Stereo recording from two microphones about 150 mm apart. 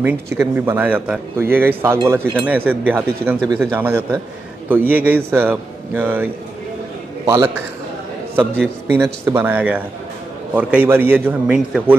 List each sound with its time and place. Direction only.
0.0 s a man's voice: 15° right (ahead or behind)
7.2 s a man's voice: 20° right (ahead or behind)